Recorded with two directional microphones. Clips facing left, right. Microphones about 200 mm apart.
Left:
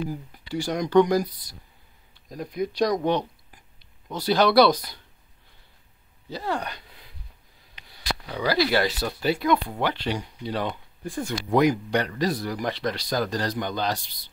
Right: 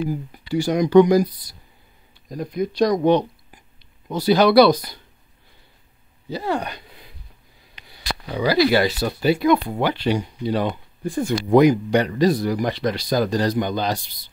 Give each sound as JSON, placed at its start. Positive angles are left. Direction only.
{"t": 0.5, "sound": "speech", "side_deg": -5}
{"t": 2.2, "sound": "speech", "side_deg": 0}
{"t": 3.0, "sound": "speech", "side_deg": -20}
{"t": 4.1, "sound": "speech", "side_deg": -5}
{"t": 6.3, "sound": "speech", "side_deg": -10}
{"t": 7.9, "sound": "speech", "side_deg": -10}